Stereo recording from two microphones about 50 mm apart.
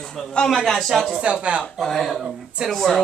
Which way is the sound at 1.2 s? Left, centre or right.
Right.